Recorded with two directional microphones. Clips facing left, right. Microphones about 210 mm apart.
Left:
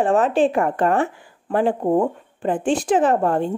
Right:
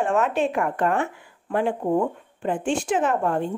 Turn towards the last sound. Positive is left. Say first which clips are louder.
# left 4 dB
turn(degrees=35)  # may be behind; listen again after turning